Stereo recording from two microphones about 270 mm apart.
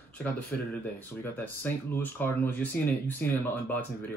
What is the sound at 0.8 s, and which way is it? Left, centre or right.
Speech, centre.